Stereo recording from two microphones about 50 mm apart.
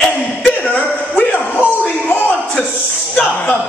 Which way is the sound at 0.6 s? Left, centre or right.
Left.